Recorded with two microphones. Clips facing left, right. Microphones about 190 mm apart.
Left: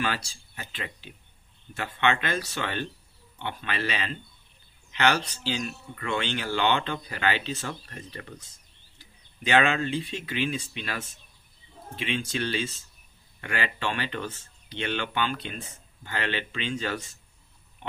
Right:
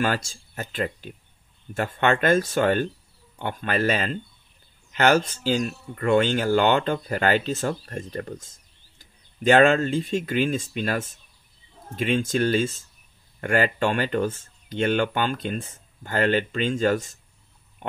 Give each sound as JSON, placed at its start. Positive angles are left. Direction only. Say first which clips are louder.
{"t": 0.0, "sound": "speech", "louder": "right 6 dB", "side_deg": -45}